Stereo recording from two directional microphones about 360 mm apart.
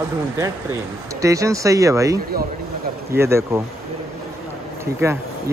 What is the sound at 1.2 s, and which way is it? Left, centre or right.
Speech, centre.